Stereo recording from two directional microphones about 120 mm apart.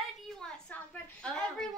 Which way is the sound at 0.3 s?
5° left (ahead or behind).